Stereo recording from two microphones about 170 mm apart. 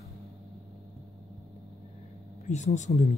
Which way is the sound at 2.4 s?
45° left (ahead or behind).